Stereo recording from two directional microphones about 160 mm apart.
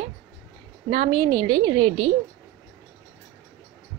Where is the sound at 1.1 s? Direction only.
30° right (ahead or behind).